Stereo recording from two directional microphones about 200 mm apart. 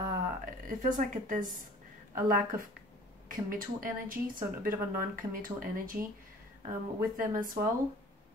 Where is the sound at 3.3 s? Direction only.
45° right (ahead or behind).